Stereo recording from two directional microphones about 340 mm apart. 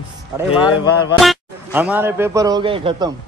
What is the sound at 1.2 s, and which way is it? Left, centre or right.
A man's voice, centre.